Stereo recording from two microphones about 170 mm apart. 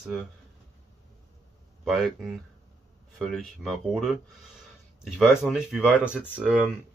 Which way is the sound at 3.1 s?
Centre (ahead or behind).